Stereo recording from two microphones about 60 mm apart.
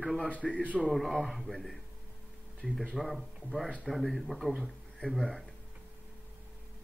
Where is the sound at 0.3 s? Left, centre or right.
Left.